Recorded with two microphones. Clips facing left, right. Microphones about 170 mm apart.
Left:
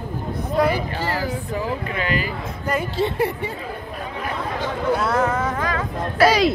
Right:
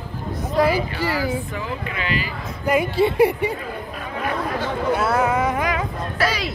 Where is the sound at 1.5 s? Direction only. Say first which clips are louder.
Left 3 dB; 40° left (ahead or behind).